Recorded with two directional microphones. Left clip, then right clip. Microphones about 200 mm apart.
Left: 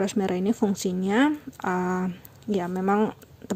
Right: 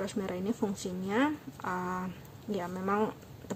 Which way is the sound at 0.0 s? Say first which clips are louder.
Left 9 dB; 40° left (ahead or behind).